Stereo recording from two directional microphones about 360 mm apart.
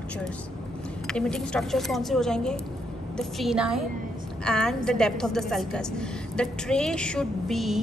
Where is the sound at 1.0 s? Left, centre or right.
Centre.